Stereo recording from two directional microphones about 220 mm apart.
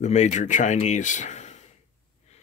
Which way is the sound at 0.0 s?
30° left (ahead or behind).